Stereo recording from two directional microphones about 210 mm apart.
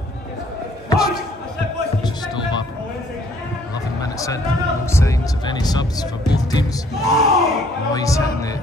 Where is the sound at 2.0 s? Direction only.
20° left (ahead or behind).